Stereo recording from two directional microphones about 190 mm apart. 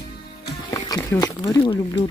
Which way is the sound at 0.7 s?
15° left (ahead or behind).